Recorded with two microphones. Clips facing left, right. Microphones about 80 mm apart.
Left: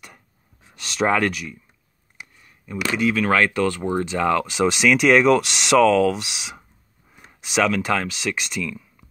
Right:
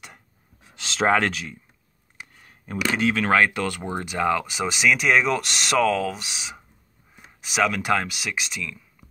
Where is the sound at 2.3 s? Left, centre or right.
Right.